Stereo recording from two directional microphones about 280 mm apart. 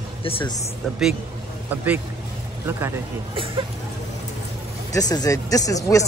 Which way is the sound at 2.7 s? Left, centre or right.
Centre.